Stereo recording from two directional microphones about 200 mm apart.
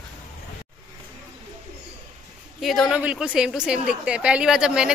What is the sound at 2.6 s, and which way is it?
A woman's voice, centre (ahead or behind).